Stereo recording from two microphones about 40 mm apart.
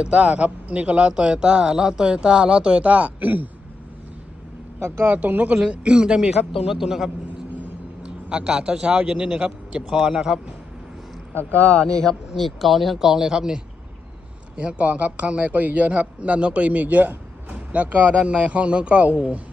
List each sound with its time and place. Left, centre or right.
0.0 s a man's voice: right
1.1 s speech: centre; by 3.4 s right
5.0 s a man's voice: right
5.7 s speech: right
6.7 s a man's voice: centre
8.3 s speech: right
9.8 s a man's voice: centre
11.9 s speech: centre
12.4 s speech: centre
13.1 s a man's voice: centre
14.6 s a man's voice: right